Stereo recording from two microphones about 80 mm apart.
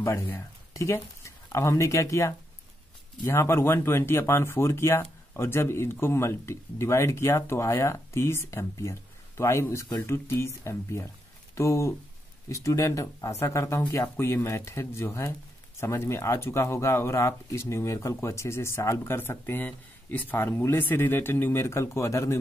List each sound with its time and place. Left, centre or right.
0.3 s speech: left